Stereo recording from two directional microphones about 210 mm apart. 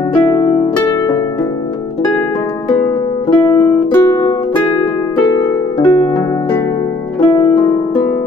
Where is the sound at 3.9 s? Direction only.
10° left (ahead or behind).